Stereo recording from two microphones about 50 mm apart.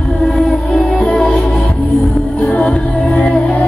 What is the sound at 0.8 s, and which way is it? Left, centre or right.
Music, centre.